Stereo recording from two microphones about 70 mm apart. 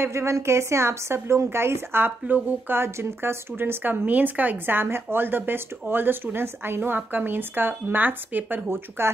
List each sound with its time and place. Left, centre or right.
0.0 s speech: right